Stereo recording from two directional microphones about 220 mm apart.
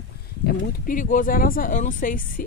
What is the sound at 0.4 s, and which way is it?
Speech, 40° left (ahead or behind).